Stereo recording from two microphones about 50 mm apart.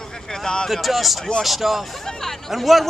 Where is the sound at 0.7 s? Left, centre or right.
Centre.